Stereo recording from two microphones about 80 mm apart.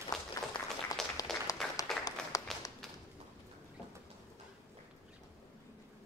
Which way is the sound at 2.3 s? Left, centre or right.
Left.